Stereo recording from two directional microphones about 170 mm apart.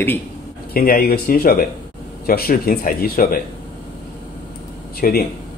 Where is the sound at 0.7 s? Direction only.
60° left (ahead or behind).